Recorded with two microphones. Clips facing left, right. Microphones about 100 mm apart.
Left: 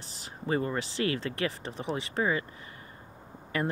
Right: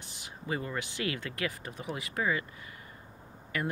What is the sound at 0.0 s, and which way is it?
Speech, 35° left (ahead or behind).